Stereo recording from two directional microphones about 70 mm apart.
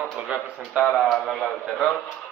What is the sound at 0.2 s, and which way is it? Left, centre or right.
Speech, centre.